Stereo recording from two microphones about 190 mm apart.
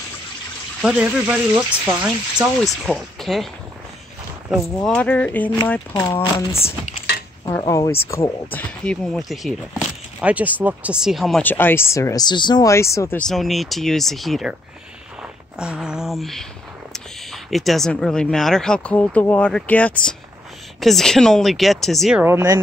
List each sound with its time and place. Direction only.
0.8 s speech: 5° right (ahead or behind)
4.8 s speech: 5° left (ahead or behind)
13.2 s speech: centre (ahead or behind)
15.6 s speech: 5° right (ahead or behind)
22.2 s speech: 15° right (ahead or behind)